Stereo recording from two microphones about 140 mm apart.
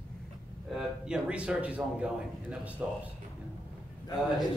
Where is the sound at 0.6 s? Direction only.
5° right (ahead or behind).